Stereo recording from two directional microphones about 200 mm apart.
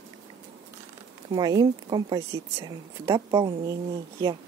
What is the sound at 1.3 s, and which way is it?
Speech, 20° right (ahead or behind).